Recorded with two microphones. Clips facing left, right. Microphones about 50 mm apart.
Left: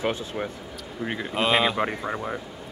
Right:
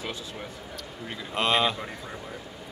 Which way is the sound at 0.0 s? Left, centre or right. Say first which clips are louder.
Left 8 dB; left.